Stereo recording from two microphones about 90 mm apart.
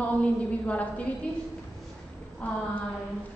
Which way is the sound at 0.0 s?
15° left (ahead or behind).